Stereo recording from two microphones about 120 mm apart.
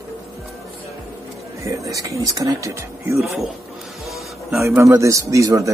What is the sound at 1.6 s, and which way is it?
Speech, 25° right (ahead or behind).